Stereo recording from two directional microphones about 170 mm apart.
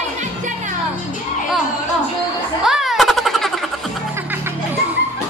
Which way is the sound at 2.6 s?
Centre (ahead or behind).